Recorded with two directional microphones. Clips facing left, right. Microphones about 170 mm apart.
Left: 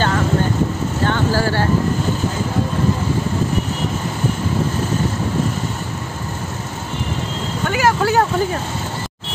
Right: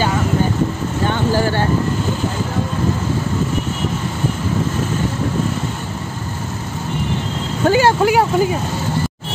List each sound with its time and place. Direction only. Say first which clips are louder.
1.0 s vehicle: right 1 dB; 15° right (ahead or behind)
7.6 s vehicle: right 5 dB; 30° right (ahead or behind)
8.0 s speech: right 2 dB; 10° right (ahead or behind)